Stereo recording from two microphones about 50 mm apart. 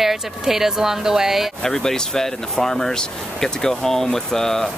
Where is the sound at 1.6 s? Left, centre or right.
Centre.